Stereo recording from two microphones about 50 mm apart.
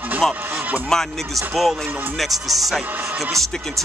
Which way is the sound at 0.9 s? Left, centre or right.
Centre.